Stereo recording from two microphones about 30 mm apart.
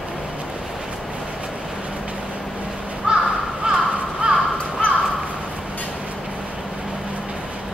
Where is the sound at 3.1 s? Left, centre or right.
Right.